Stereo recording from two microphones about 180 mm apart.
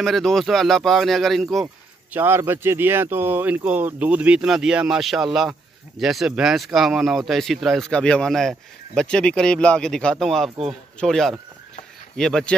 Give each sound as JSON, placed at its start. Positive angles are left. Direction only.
{"t": 0.0, "sound": "speech", "side_deg": 0}
{"t": 2.1, "sound": "speech", "side_deg": -10}